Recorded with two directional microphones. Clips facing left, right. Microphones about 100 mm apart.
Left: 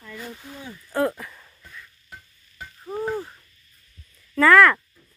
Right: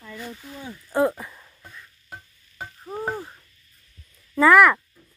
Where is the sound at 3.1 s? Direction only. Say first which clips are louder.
Left 4 dB; 10° right (ahead or behind).